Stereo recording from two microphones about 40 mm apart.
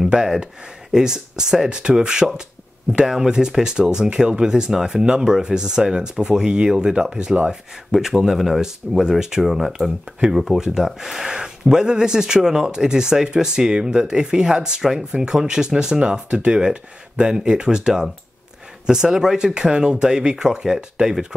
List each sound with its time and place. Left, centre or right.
0.1 s speech: centre
7.4 s speech: centre